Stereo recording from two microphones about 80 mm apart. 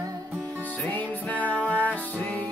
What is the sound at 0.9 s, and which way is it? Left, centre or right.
Music, centre.